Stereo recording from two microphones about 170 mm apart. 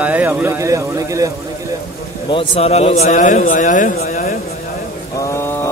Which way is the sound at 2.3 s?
35° left (ahead or behind).